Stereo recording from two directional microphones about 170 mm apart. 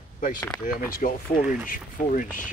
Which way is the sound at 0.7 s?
55° left (ahead or behind).